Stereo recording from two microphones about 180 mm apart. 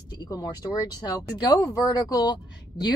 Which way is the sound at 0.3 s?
20° left (ahead or behind).